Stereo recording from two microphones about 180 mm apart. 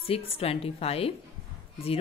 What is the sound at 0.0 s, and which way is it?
A woman's voice, 30° left (ahead or behind).